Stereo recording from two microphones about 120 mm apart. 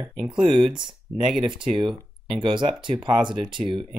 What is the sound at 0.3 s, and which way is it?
Speech, 40° right (ahead or behind).